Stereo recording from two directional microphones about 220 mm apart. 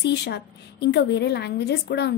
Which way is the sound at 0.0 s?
50° left (ahead or behind).